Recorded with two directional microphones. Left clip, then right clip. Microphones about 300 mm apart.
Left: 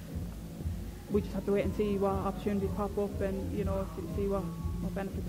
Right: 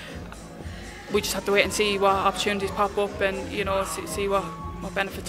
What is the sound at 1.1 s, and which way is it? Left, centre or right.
Speech, centre.